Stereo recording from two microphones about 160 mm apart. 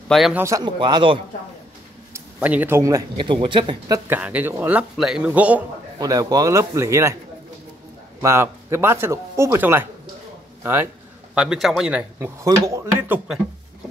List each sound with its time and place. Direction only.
0.1 s speech: centre (ahead or behind)
0.4 s a man's voice: 20° right (ahead or behind)
2.1 s speech: 10° right (ahead or behind)
3.3 s speech: 30° right (ahead or behind)
4.1 s speech: 10° right (ahead or behind)
5.9 s a man's voice: 25° right (ahead or behind)
8.2 s a man's voice: 15° right (ahead or behind)
11.3 s speech: 5° right (ahead or behind)
12.6 s a man's voice: 20° right (ahead or behind)